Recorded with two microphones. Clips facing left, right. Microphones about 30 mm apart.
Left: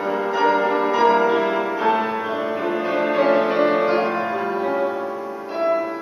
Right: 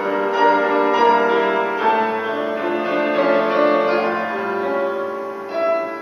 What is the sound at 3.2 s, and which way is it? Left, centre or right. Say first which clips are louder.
Music: right 1 dB; centre.